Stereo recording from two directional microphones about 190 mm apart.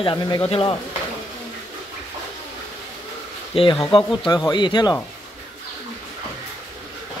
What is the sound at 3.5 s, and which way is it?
Speech, 30° left (ahead or behind).